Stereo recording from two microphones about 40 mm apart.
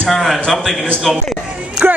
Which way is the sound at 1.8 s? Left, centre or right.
Right.